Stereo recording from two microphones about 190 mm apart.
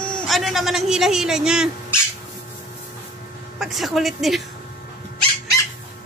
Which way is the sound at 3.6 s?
Centre (ahead or behind).